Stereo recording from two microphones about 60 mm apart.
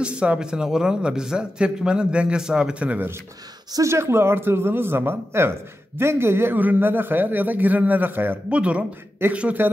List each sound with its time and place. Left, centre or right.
0.0 s a man's voice: centre
3.8 s a man's voice: right
8.5 s speech: centre